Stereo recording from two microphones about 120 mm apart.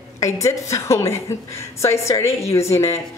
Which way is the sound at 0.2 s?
25° left (ahead or behind).